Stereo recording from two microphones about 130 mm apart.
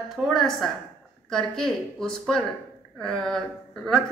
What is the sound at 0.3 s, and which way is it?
A woman's voice, centre (ahead or behind).